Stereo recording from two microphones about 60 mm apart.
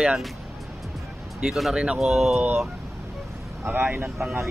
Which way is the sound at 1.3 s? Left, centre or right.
Centre.